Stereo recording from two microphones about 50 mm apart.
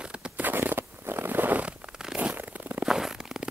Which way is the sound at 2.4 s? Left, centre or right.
Right.